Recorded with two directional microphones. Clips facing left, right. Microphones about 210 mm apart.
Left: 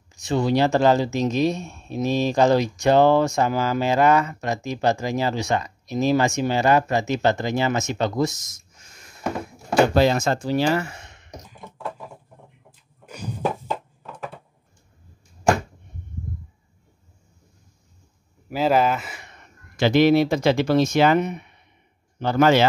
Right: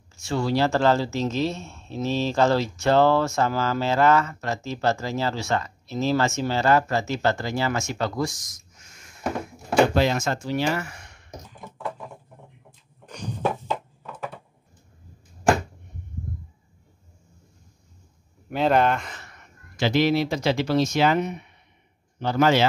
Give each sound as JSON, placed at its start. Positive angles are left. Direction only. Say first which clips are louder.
{"t": 0.1, "sound": "speech", "louder": "left 3 dB", "side_deg": 20}
{"t": 11.6, "sound": "a sound", "louder": "even", "side_deg": 0}
{"t": 18.5, "sound": "speech", "louder": "left 1 dB", "side_deg": 5}
{"t": 19.8, "sound": "speech", "louder": "left 5 dB", "side_deg": 55}